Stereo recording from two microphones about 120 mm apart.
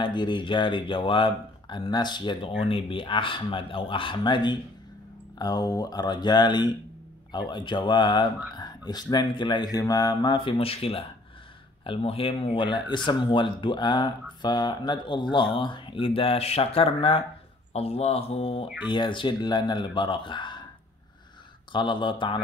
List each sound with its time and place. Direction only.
0.0 s speech: 40° left (ahead or behind)
8.5 s a sound: 35° left (ahead or behind)
9.1 s speech: 40° left (ahead or behind)
21.7 s speech: 40° left (ahead or behind)